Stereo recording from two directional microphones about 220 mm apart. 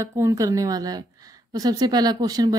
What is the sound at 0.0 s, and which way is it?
A woman's voice, 15° right (ahead or behind).